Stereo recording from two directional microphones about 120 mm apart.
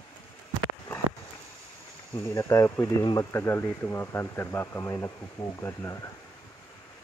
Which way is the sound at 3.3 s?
20° left (ahead or behind).